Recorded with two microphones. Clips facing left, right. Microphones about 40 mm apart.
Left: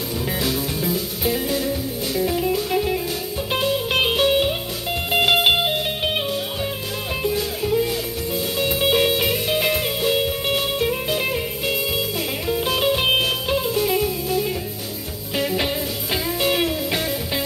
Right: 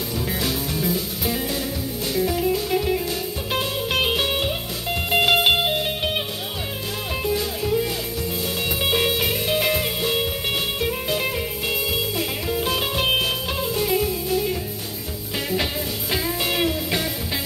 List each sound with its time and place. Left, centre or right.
0.4 s music: centre
7.2 s music: centre